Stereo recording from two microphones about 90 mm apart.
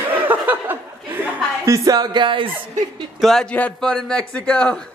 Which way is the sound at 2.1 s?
65° right (ahead or behind).